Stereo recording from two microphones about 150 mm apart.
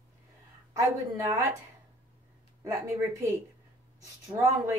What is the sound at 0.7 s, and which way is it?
Speech, 20° right (ahead or behind).